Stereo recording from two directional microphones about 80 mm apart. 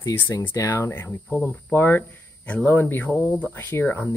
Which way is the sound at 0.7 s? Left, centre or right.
Left.